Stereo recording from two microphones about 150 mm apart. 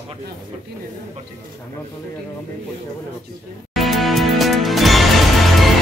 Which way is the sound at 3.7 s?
Centre (ahead or behind).